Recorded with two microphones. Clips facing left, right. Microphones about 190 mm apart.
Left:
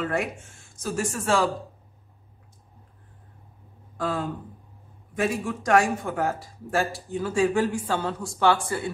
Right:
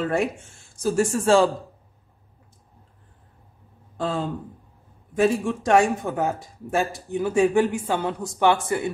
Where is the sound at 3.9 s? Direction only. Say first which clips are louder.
Right 2 dB; 25° right (ahead or behind).